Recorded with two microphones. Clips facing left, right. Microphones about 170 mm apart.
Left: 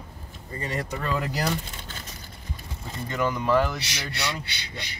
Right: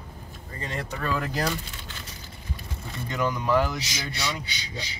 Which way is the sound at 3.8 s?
65° left (ahead or behind).